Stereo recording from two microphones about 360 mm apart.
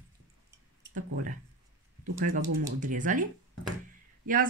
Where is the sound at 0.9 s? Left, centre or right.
Right.